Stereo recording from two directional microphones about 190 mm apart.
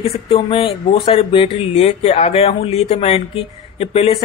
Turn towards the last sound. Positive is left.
turn(degrees=35)  # may be behind; listen again after turning